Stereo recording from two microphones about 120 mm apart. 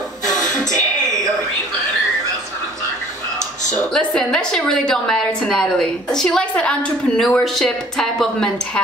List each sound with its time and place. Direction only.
3.9 s a woman's voice: 5° left (ahead or behind)